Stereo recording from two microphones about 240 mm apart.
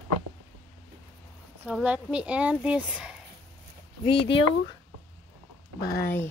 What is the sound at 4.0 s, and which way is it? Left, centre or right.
Speech, left.